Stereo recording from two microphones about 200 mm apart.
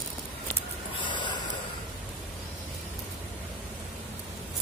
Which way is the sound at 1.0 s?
25° left (ahead or behind).